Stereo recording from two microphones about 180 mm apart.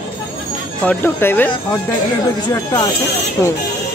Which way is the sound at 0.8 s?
10° left (ahead or behind).